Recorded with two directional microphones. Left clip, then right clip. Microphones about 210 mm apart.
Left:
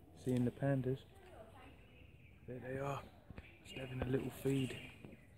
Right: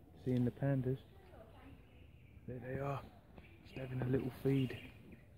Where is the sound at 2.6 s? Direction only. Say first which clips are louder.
Even; 15° right (ahead or behind).